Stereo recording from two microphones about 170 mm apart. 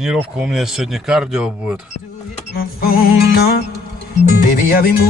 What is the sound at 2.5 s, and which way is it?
Music, 60° left (ahead or behind).